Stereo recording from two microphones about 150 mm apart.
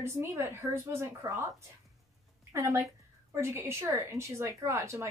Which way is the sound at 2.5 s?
20° right (ahead or behind).